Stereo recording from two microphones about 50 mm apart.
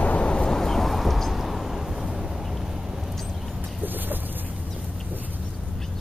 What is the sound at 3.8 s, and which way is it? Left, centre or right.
Vehicle, right.